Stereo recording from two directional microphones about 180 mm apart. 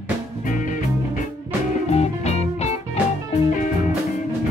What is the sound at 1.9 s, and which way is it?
Music, 35° left (ahead or behind).